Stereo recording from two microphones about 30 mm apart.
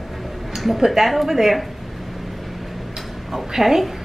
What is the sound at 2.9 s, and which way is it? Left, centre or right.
Tick-tock, centre.